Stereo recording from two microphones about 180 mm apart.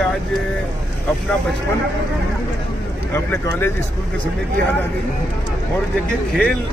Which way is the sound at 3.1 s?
10° left (ahead or behind).